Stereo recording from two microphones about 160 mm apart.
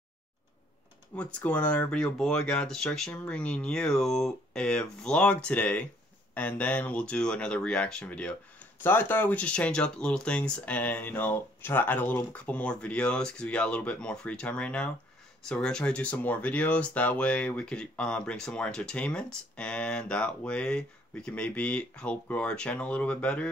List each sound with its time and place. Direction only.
1.1 s speech: 10° left (ahead or behind)